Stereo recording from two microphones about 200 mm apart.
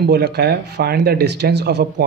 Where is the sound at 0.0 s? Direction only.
55° right (ahead or behind).